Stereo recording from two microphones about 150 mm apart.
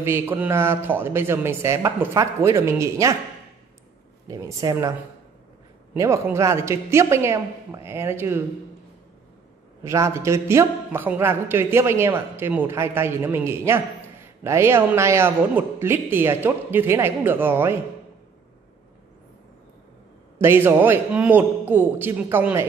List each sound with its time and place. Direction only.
0.0 s speech: 15° right (ahead or behind)
4.3 s speech: 25° right (ahead or behind)
5.9 s speech: 20° right (ahead or behind)
9.8 s speech: 20° right (ahead or behind)
20.3 s speech: 15° right (ahead or behind)